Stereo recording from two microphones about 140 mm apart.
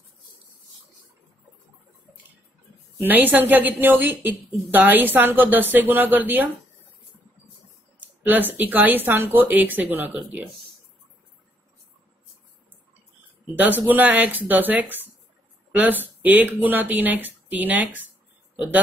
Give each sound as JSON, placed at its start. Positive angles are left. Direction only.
{"t": 3.0, "sound": "a woman's voice", "side_deg": -15}
{"t": 8.2, "sound": "a woman's voice", "side_deg": -15}
{"t": 13.6, "sound": "a woman's voice", "side_deg": -10}